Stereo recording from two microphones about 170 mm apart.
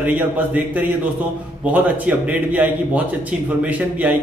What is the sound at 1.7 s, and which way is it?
A man's voice, 10° right (ahead or behind).